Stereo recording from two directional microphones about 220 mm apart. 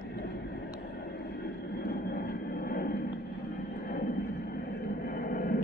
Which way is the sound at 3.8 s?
35° left (ahead or behind).